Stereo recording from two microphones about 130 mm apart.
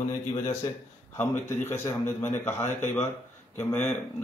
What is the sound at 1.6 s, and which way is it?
Speech, 20° left (ahead or behind).